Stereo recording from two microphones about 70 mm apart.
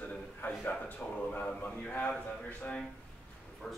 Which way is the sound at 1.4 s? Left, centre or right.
Centre.